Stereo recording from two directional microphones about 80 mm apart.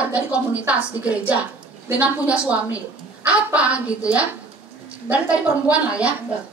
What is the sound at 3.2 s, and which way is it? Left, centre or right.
A woman's voice, centre.